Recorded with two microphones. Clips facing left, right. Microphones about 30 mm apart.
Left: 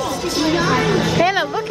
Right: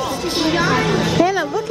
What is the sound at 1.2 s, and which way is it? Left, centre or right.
Music, left.